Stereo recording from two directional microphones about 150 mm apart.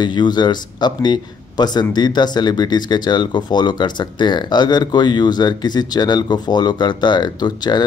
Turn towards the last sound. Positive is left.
turn(degrees=30)  # may be behind; listen again after turning